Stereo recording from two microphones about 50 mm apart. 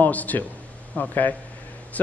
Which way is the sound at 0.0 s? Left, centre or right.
Left.